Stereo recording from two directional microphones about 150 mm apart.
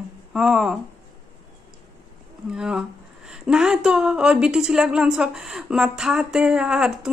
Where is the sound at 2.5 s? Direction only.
5° right (ahead or behind).